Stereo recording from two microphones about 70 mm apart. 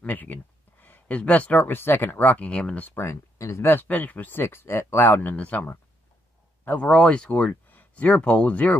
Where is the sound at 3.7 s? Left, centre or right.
Left.